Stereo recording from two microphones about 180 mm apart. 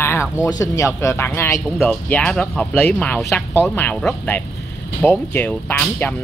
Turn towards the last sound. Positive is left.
turn(degrees=10)  # may be behind; listen again after turning